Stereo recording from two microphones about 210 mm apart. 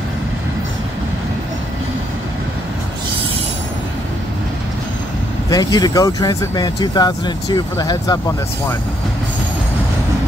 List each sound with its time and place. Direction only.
5.5 s speech: 20° left (ahead or behind)